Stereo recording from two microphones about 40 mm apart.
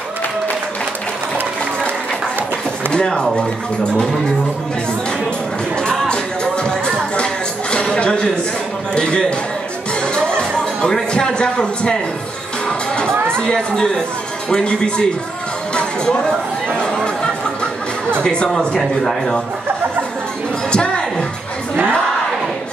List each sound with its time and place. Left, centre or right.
2.9 s a man's voice: left
6.0 s music: left
7.7 s a sound: left
8.9 s a man's voice: left
10.1 s music: left
11.1 s a man's voice: left
13.1 s music: right
13.4 s a man's voice: left
15.7 s music: left
18.2 s a man's voice: left
20.7 s music: left